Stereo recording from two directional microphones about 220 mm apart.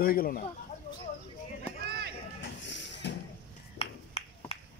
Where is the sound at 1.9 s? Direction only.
45° right (ahead or behind).